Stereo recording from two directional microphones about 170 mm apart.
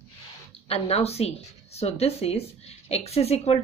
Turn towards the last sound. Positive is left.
turn(degrees=40)  # may be behind; listen again after turning